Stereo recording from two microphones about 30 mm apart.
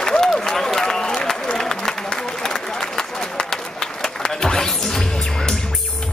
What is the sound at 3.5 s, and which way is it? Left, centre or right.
Music, centre.